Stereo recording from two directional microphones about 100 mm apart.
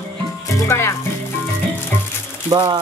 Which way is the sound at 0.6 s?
25° left (ahead or behind).